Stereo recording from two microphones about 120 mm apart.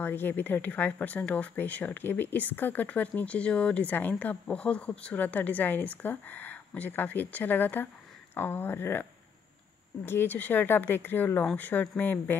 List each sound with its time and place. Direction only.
0.0 s speech: 15° left (ahead or behind)
10.0 s speech: 15° left (ahead or behind)